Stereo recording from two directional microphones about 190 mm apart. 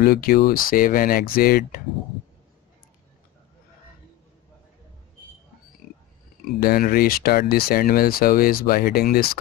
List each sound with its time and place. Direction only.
0.0 s speech: 55° left (ahead or behind)
6.6 s speech: 50° left (ahead or behind)